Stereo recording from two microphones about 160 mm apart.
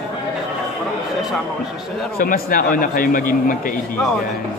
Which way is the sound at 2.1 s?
65° left (ahead or behind).